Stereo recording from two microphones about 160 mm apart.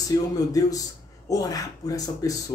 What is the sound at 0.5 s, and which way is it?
Speech, 20° left (ahead or behind).